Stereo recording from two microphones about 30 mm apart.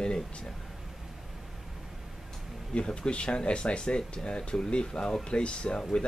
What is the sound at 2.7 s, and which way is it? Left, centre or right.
Speech, left.